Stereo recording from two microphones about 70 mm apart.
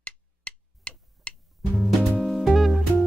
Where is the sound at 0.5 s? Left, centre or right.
Centre.